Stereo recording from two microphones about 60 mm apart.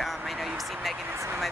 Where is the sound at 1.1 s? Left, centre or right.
Right.